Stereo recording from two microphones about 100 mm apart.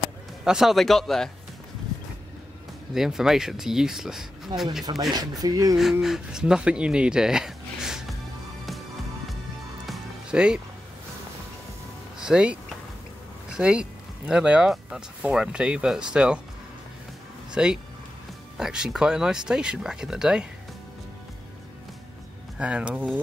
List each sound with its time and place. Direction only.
0.4 s speech: 5° right (ahead or behind)
2.9 s speech: 5° right (ahead or behind)
4.9 s speech: 50° right (ahead or behind)
5.4 s speech: 40° right (ahead or behind)
5.8 s speech: 5° right (ahead or behind)
9.8 s music: 10° right (ahead or behind)
12.2 s a sound: 5° right (ahead or behind)
13.5 s speech: 10° right (ahead or behind)
17.5 s speech: 5° right (ahead or behind)
22.6 s speech: 10° right (ahead or behind)